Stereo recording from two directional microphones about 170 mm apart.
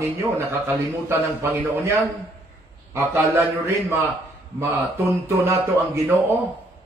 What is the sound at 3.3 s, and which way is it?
Speech, 15° right (ahead or behind).